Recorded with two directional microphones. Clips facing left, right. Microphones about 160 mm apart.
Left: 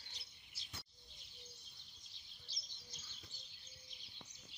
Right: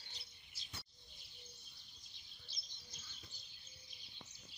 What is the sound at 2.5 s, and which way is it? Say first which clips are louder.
Bird: left 1 dB; 90° left.